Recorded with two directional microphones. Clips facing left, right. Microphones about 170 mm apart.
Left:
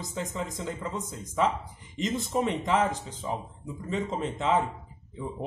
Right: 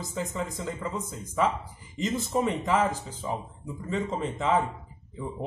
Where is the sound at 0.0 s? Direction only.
Centre (ahead or behind).